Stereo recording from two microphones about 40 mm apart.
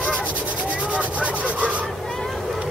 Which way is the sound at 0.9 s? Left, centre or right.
Right.